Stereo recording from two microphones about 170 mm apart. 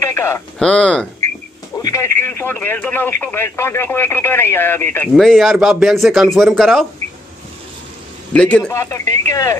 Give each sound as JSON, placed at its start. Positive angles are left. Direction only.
{"t": 0.0, "sound": "radio", "side_deg": 15}
{"t": 0.6, "sound": "speech", "side_deg": 5}
{"t": 1.8, "sound": "speech", "side_deg": 20}
{"t": 5.1, "sound": "speech", "side_deg": 0}
{"t": 8.3, "sound": "speech", "side_deg": 5}
{"t": 8.6, "sound": "speech", "side_deg": 20}